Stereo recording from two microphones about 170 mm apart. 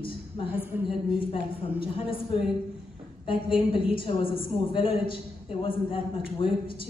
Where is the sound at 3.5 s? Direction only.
30° left (ahead or behind).